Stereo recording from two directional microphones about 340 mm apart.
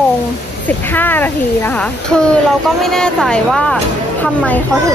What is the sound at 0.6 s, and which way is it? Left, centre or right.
Speech, centre.